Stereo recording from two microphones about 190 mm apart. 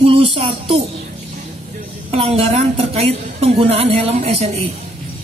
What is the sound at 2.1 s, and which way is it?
A woman's voice, 30° right (ahead or behind).